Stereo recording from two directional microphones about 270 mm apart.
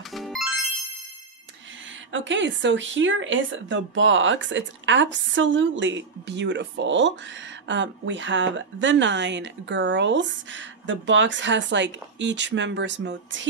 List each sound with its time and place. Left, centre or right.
0.1 s music: centre
2.1 s speech: right